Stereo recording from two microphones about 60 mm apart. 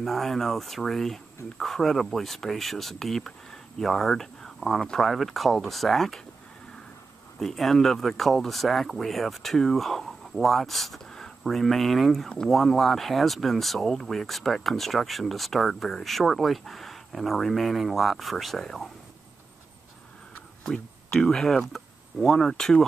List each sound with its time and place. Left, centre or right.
0.0 s speech: centre
7.3 s speech: centre
20.6 s speech: centre